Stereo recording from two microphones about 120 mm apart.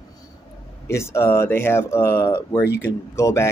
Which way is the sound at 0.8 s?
20° left (ahead or behind).